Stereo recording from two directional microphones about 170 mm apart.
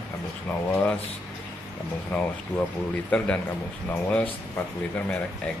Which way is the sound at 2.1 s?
10° left (ahead or behind).